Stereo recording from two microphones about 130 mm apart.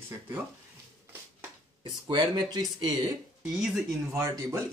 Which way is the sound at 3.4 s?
5° right (ahead or behind).